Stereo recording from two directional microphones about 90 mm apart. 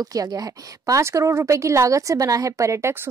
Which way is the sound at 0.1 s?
40° right (ahead or behind).